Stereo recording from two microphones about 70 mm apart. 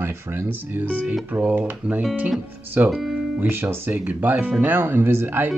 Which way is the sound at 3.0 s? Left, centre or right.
Centre.